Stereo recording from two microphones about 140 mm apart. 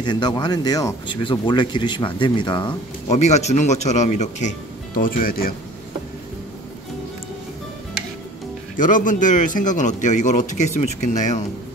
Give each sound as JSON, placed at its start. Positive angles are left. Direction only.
{"t": 0.0, "sound": "speech", "side_deg": 30}
{"t": 3.1, "sound": "speech", "side_deg": 55}
{"t": 8.7, "sound": "speech", "side_deg": 70}